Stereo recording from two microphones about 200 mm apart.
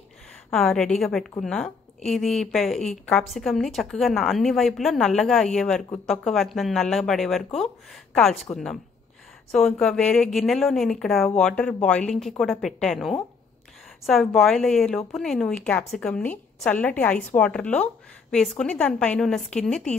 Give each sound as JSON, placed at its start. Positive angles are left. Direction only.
{"t": 0.5, "sound": "a woman's voice", "side_deg": 5}